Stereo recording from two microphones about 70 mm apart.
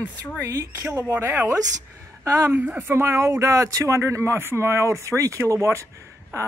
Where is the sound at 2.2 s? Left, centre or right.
Right.